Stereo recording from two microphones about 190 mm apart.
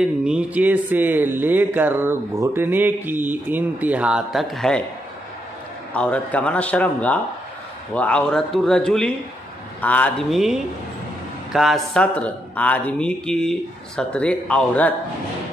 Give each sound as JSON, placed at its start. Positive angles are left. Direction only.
{"t": 0.0, "sound": "speech", "side_deg": -5}
{"t": 5.9, "sound": "a man's voice", "side_deg": 5}